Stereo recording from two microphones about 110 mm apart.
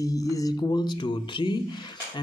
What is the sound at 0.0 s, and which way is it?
Speech, 30° left (ahead or behind).